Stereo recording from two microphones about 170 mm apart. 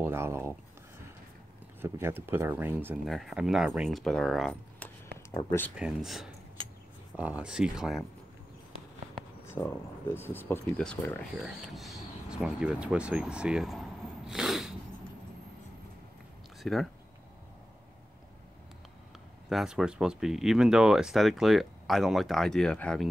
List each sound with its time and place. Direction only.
0.0 s a sound: 15° right (ahead or behind)
1.8 s speech: 15° right (ahead or behind)
3.1 s speech: centre (ahead or behind)
5.3 s speech: 20° left (ahead or behind)
5.8 s speech: 5° right (ahead or behind)
9.4 s speech: 15° left (ahead or behind); by 14.8 s 5° right (ahead or behind)
16.6 s speech: centre (ahead or behind)
19.5 s speech: 5° right (ahead or behind)